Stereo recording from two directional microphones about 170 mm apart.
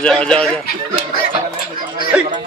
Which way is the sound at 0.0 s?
5° left (ahead or behind).